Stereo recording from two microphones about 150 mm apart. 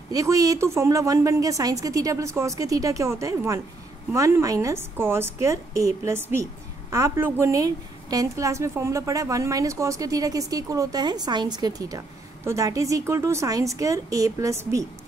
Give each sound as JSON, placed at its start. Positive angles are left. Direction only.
{"t": 0.1, "sound": "a woman's voice", "side_deg": -20}